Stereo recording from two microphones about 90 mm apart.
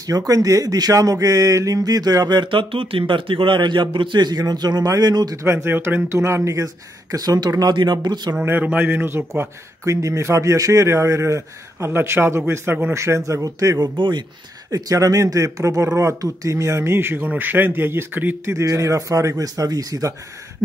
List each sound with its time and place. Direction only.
0.0 s speech: 40° right (ahead or behind)
5.4 s a man's voice: 30° right (ahead or behind)
6.1 s speech: 35° right (ahead or behind); by 8.4 s 55° right (ahead or behind)
8.4 s a man's voice: 15° right (ahead or behind)
9.8 s speech: 35° right (ahead or behind)
13.9 s speech: 60° right (ahead or behind)
14.7 s speech: 40° right (ahead or behind); by 18.6 s 25° right (ahead or behind)
18.6 s speech: 35° right (ahead or behind)